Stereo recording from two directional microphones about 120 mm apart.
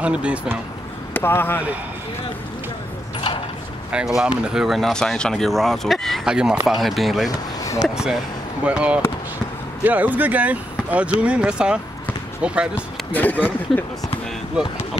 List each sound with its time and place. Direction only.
0.0 s speech: 10° right (ahead or behind)
1.1 s speech: 20° left (ahead or behind)
4.2 s speech: 5° right (ahead or behind)
7.2 s basketball bounce: 30° left (ahead or behind)
7.9 s speech: 5° right (ahead or behind)
12.7 s speech: 15° left (ahead or behind)